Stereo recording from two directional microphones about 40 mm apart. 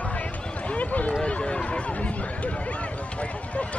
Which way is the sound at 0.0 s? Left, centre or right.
Left.